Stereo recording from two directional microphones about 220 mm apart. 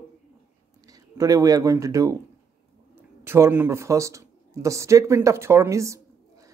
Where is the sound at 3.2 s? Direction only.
10° right (ahead or behind).